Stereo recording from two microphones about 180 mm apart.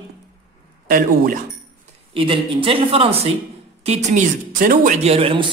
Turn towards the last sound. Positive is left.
turn(degrees=-30)  # may be behind; listen again after turning